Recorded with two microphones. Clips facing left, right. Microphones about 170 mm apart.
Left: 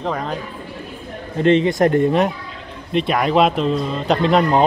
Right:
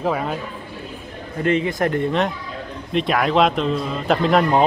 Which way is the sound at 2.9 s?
Centre (ahead or behind).